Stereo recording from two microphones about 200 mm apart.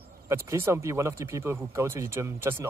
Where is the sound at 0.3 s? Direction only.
15° right (ahead or behind).